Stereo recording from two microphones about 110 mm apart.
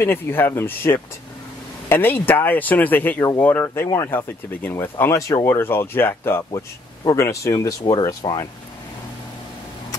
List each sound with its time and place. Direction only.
0.0 s speech: 20° left (ahead or behind)